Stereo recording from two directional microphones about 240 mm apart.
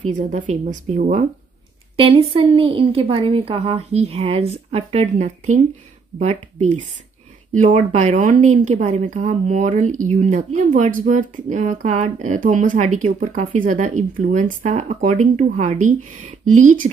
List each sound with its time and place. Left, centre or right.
0.1 s speech: right
2.0 s a woman's voice: right